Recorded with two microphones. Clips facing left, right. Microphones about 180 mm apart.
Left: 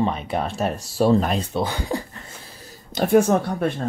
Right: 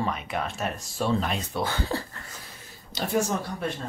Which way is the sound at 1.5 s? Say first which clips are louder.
Left 4 dB; 15° left (ahead or behind).